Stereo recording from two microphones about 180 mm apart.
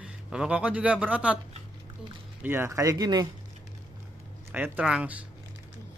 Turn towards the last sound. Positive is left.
turn(degrees=-5)  # may be behind; listen again after turning